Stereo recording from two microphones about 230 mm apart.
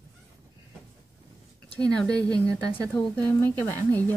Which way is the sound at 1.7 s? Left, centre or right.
Centre.